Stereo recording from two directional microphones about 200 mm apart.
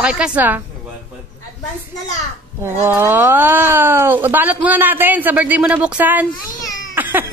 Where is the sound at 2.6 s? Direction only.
10° right (ahead or behind).